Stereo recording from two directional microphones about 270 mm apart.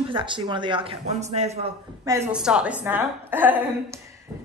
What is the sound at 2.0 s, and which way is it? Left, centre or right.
A woman's voice, centre.